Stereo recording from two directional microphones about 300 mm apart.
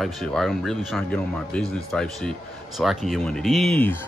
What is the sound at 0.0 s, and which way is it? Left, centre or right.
A man's voice, centre.